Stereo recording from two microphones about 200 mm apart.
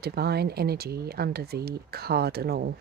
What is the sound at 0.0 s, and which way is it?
Speech, 55° right (ahead or behind).